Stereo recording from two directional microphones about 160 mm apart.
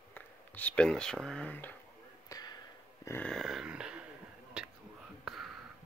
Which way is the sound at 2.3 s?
25° left (ahead or behind).